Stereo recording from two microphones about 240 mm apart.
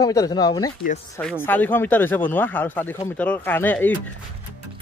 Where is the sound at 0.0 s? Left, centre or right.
Centre.